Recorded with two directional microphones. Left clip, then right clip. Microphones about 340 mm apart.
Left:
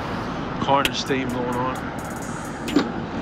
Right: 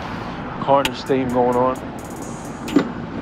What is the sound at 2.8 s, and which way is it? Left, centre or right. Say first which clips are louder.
Vehicle: right 3 dB; centre.